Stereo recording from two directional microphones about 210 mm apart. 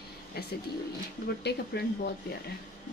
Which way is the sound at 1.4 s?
50° left (ahead or behind).